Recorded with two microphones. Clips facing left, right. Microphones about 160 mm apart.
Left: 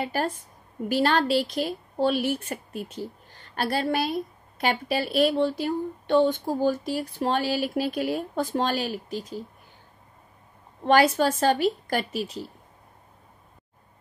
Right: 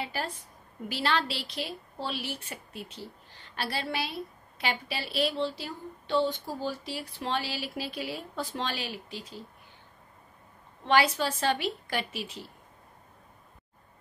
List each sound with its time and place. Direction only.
0.0 s a woman's voice: 50° left (ahead or behind)
10.8 s a woman's voice: 45° left (ahead or behind)